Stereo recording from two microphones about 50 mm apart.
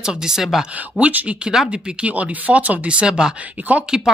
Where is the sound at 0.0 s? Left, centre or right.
Centre.